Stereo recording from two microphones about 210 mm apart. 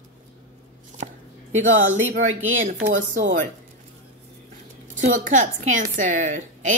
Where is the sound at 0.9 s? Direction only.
35° right (ahead or behind).